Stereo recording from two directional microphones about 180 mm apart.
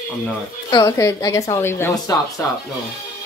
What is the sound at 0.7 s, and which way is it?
A woman's voice, 20° left (ahead or behind).